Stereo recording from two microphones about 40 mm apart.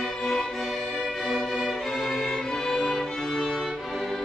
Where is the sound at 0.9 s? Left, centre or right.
Centre.